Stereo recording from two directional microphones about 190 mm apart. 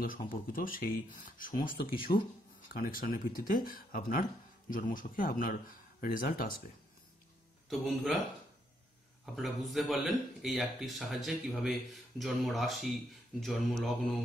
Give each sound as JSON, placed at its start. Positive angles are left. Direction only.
{"t": 0.0, "sound": "speech", "side_deg": 45}
{"t": 2.1, "sound": "speech", "side_deg": 30}
{"t": 2.7, "sound": "speech", "side_deg": 50}
{"t": 7.7, "sound": "speech", "side_deg": 0}
{"t": 9.2, "sound": "speech", "side_deg": 0}